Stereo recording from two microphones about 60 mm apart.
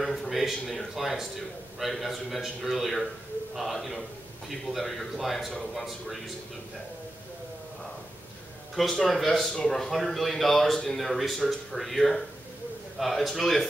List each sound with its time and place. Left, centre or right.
0.0 s a man's voice: centre
8.7 s a man's voice: centre